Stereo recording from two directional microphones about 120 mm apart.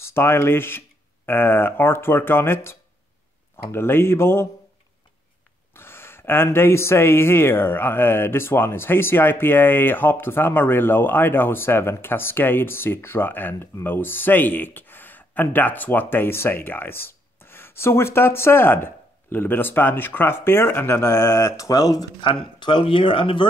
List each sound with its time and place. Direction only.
0.0 s speech: 20° left (ahead or behind)
5.8 s speech: 20° left (ahead or behind)
22.2 s speech: 45° left (ahead or behind)